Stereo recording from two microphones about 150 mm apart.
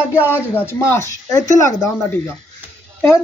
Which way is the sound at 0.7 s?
20° left (ahead or behind).